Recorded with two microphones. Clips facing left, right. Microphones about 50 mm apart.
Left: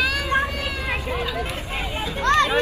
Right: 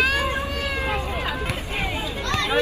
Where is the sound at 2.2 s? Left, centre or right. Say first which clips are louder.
Left 9 dB; left.